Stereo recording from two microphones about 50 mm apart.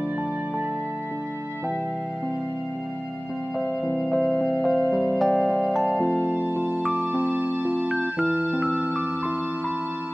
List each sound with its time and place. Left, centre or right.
3.8 s music: centre
6.2 s keyboard: right
6.8 s music: centre; by 7.9 s right
7.9 s electric piano: centre
8.5 s music: centre